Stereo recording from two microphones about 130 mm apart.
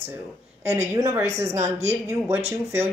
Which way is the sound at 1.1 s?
25° right (ahead or behind).